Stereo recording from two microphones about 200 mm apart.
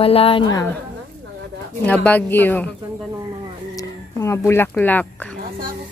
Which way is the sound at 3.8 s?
15° left (ahead or behind).